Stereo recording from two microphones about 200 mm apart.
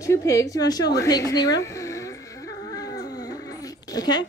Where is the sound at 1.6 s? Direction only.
15° left (ahead or behind).